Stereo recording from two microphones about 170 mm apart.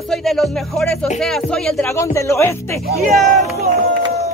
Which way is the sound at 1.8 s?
15° left (ahead or behind).